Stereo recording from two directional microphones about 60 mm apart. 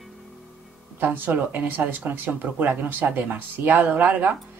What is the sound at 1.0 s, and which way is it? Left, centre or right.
Speech, right.